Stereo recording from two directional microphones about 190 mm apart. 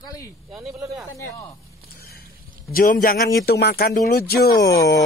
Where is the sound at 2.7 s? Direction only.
50° left (ahead or behind).